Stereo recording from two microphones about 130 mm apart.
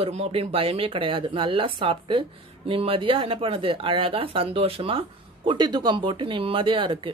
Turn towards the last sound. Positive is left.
turn(degrees=-40)  # may be behind; listen again after turning